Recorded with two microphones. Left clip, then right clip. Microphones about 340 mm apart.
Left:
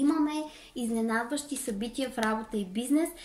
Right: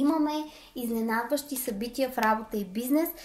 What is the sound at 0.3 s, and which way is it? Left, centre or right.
Speech, centre.